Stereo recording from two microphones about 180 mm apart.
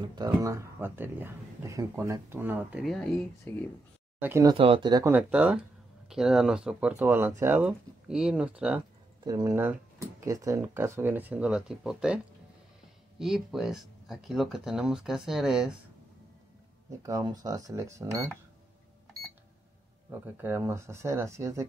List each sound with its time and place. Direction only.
0.0 s speech: 20° right (ahead or behind)
2.8 s speech: centre (ahead or behind)
4.2 s speech: 15° right (ahead or behind)
4.6 s speech: 30° right (ahead or behind)
5.1 s speech: 5° right (ahead or behind)
9.2 s speech: 20° right (ahead or behind)
13.2 s speech: centre (ahead or behind)
17.0 s speech: 20° right (ahead or behind)
20.1 s speech: 10° right (ahead or behind)